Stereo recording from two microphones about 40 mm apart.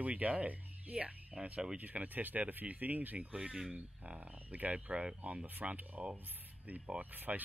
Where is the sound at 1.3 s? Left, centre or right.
Centre.